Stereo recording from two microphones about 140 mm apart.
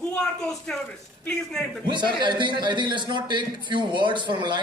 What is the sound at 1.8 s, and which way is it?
A man's voice, 35° right (ahead or behind).